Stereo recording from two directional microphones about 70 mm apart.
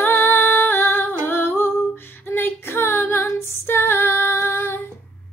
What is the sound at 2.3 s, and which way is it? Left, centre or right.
Female singing, left.